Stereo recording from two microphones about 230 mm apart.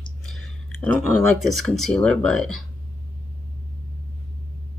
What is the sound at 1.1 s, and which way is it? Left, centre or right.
Speech, right.